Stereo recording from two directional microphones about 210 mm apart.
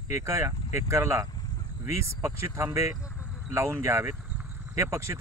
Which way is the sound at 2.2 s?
10° right (ahead or behind).